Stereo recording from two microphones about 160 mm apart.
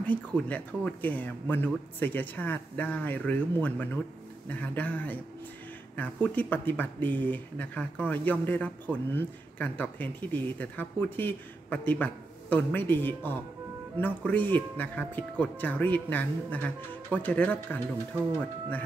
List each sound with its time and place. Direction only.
0.0 s speech: 10° left (ahead or behind)